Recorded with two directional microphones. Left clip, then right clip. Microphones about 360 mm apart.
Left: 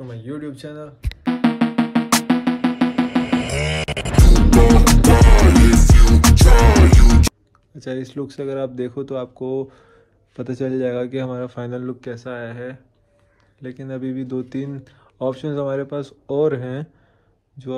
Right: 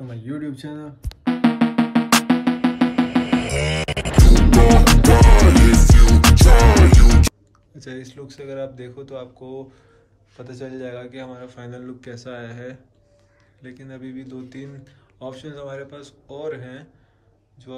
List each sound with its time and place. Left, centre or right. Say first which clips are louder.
0.1 s speech: right 1 dB; centre
1.2 s music: even; centre
9.4 s speech: left 10 dB; left
10.4 s speech: left 10 dB; centre